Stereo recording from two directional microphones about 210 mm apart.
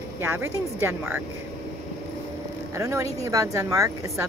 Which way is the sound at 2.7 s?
15° right (ahead or behind).